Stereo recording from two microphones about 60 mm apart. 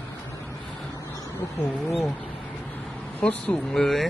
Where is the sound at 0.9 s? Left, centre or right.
Left.